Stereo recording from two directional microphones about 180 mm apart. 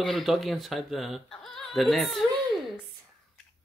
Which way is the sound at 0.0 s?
Centre (ahead or behind).